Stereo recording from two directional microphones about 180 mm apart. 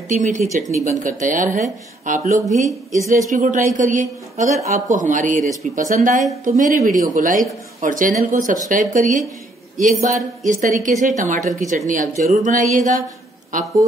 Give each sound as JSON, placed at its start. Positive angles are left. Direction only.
{"t": 0.1, "sound": "speech", "side_deg": -45}